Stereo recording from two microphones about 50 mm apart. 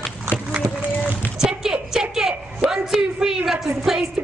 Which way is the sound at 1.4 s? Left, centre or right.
Centre.